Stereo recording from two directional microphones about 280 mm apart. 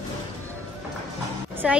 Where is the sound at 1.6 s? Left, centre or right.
Centre.